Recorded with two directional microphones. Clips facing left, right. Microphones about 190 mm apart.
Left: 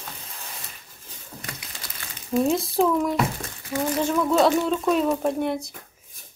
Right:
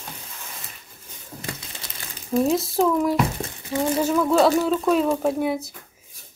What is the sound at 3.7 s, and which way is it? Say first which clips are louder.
Speech: right 2 dB; 25° right (ahead or behind).